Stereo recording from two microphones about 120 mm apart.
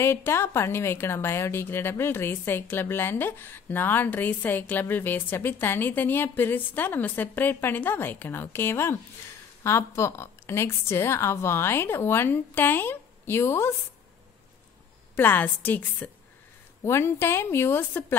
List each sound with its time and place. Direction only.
0.0 s a woman's voice: 20° left (ahead or behind)
15.1 s a woman's voice: 15° left (ahead or behind)